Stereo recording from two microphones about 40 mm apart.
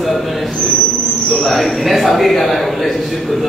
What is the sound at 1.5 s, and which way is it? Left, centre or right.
Speech, centre.